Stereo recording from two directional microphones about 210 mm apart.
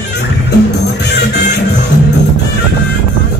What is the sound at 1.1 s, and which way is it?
Music, 55° left (ahead or behind).